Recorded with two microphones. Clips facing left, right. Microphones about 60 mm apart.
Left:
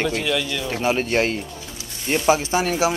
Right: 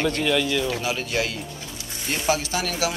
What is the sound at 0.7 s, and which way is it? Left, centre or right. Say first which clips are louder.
Speech: left 5 dB; left.